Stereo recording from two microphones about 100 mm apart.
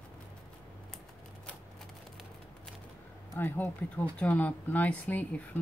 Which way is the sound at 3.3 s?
15° left (ahead or behind).